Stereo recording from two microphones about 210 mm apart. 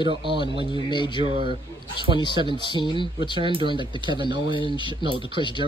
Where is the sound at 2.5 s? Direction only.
20° left (ahead or behind).